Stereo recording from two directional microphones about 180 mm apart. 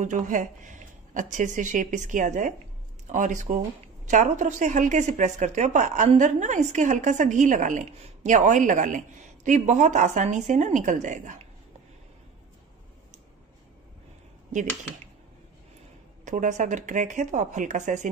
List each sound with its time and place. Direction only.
0.0 s speech: 45° right (ahead or behind)
16.3 s speech: 40° right (ahead or behind)